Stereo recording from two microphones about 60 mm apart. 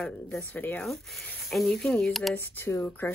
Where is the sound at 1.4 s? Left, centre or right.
Centre.